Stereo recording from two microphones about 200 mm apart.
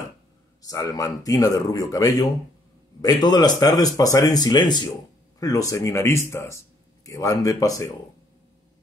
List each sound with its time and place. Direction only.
0.6 s a man's voice: 15° left (ahead or behind)